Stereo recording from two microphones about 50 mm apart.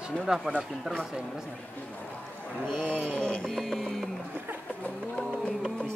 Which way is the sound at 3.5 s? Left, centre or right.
Centre.